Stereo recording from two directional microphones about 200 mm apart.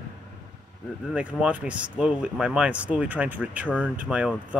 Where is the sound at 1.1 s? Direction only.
5° right (ahead or behind).